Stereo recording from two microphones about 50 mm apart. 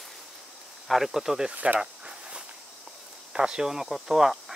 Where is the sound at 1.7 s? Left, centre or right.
Centre.